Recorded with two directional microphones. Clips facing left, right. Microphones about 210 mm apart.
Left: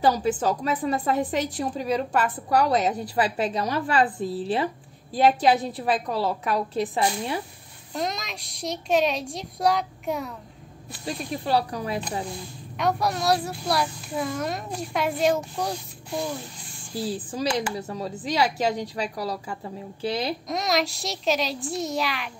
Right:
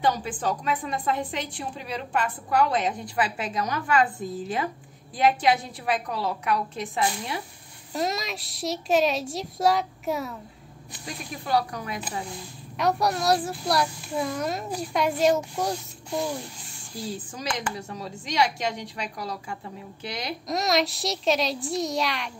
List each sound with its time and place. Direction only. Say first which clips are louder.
0.0 s a woman's voice: left 4 dB; 40° left (ahead or behind)
7.9 s a child's voice: right 2 dB; 5° right (ahead or behind)
11.1 s a woman's voice: left 3 dB; 30° left (ahead or behind)
12.7 s a child's voice: right 1 dB; centre (ahead or behind)
17.1 s a woman's voice: left 6 dB; 35° left (ahead or behind)
20.4 s a child's voice: right 5 dB; centre (ahead or behind)